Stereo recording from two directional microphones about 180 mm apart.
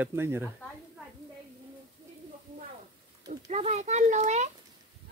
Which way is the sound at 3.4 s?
40° right (ahead or behind).